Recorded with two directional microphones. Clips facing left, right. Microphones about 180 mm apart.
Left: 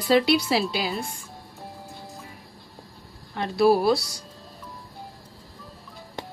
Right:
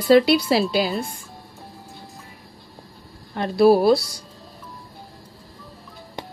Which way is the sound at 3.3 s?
40° right (ahead or behind).